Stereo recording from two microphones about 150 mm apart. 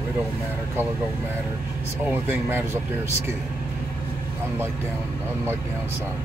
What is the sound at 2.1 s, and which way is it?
Speech, 15° right (ahead or behind).